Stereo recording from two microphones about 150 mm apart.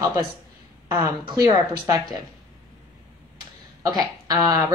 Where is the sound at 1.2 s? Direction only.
30° right (ahead or behind).